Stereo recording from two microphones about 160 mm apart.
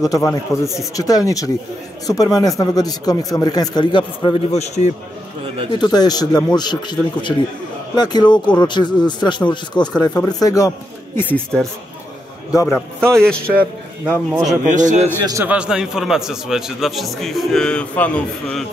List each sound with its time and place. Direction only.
0.0 s speech: 20° left (ahead or behind); by 4.9 s 45° left (ahead or behind)
5.7 s speech: 25° left (ahead or behind)
11.1 s a man's voice: 10° left (ahead or behind)
14.6 s a man's voice: 50° right (ahead or behind)
15.4 s a man's voice: 5° right (ahead or behind); by 18.6 s 10° left (ahead or behind)